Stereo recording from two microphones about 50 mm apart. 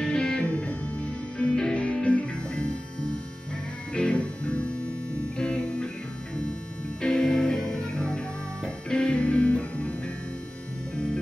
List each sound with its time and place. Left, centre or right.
0.0 s music: centre
0.5 s music: left
3.9 s music: left
7.0 s music: centre